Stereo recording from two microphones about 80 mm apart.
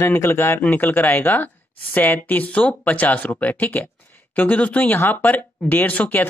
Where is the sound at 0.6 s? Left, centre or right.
Left.